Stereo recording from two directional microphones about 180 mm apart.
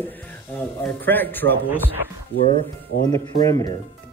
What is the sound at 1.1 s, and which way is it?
Speech, 10° left (ahead or behind).